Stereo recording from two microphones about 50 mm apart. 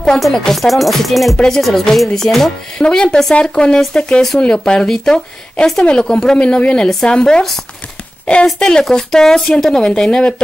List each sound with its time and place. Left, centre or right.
0.2 s a woman's voice: centre
8.5 s a woman's voice: centre